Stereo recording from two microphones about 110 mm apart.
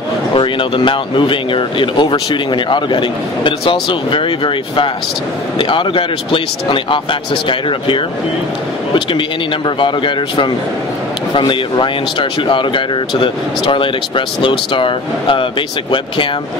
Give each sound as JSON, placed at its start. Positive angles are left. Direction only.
{"t": 0.3, "sound": "speech", "side_deg": 50}
{"t": 9.8, "sound": "speech", "side_deg": 50}